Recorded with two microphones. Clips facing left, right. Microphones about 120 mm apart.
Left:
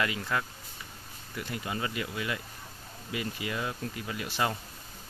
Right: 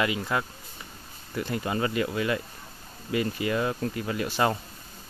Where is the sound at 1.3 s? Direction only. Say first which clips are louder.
Right 7 dB; 40° right (ahead or behind).